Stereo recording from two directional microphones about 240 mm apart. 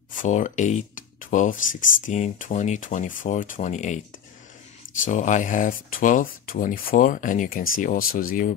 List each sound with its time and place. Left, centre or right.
0.1 s speech: left
5.0 s speech: left